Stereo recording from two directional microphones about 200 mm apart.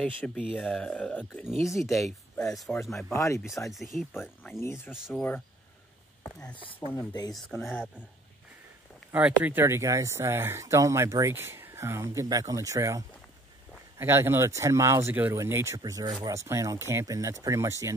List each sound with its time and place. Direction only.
0.0 s speech: centre (ahead or behind)
3.0 s speech: 15° left (ahead or behind)
3.7 s speech: centre (ahead or behind)
4.9 s speech: centre (ahead or behind)
7.1 s speech: 20° left (ahead or behind)
7.4 s speech: centre (ahead or behind)
9.1 s speech: 10° right (ahead or behind)